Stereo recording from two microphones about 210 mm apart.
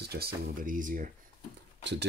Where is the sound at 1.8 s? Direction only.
55° right (ahead or behind).